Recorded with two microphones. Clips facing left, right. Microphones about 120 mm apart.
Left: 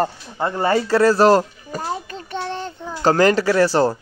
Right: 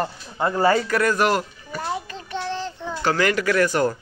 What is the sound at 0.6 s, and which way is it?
Music, 25° left (ahead or behind).